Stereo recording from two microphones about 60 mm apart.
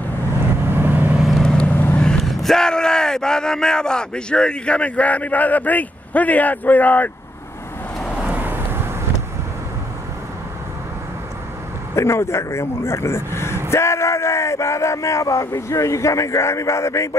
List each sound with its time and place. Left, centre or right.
0.7 s vehicle: right
1.4 s vehicle: centre
2.0 s speech: centre; by 7.1 s left
8.3 s vehicle: right
11.9 s speech: left